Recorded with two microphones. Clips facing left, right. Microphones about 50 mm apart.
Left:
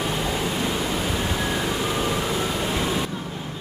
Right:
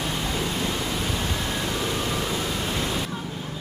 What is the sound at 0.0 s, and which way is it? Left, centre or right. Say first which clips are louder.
Pink noise: left 3 dB; centre.